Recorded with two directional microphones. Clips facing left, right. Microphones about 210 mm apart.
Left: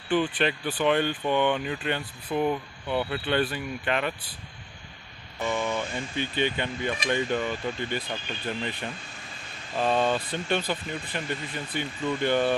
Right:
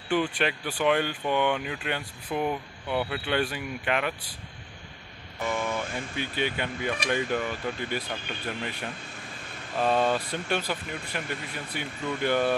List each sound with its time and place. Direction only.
0.1 s speech: 10° right (ahead or behind)
5.4 s speech: 5° right (ahead or behind)